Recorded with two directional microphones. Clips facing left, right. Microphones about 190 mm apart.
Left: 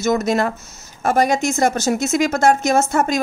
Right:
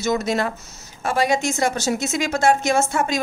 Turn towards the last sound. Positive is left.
turn(degrees=45)  # may be behind; listen again after turning